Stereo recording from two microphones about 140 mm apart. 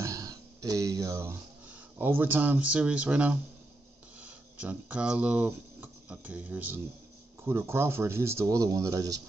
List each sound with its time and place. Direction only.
0.0 s speech: 25° right (ahead or behind)